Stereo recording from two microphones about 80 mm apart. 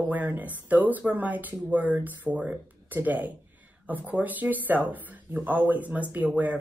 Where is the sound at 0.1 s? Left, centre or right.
Right.